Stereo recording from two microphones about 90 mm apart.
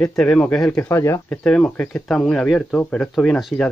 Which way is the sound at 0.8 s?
30° left (ahead or behind).